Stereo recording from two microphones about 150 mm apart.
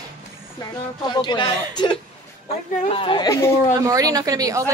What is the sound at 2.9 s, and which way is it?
Speech, 35° left (ahead or behind).